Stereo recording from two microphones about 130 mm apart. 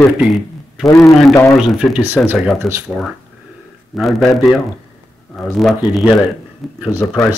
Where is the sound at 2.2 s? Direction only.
10° left (ahead or behind).